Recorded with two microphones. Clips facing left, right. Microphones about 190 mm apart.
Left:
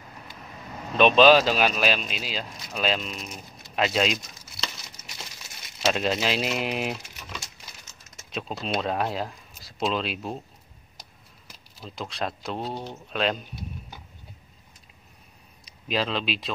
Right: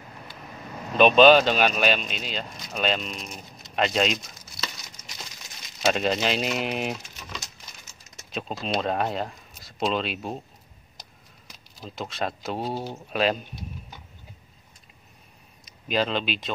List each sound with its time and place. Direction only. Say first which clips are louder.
0.9 s speech: right 1 dB; centre (ahead or behind)
11.8 s speech: right 1 dB; centre (ahead or behind)
15.6 s speech: right 2 dB; centre (ahead or behind)